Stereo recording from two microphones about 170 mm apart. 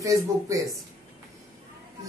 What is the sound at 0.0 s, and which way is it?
Speech, 20° right (ahead or behind).